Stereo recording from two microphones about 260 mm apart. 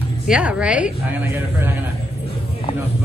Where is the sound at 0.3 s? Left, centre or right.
Centre.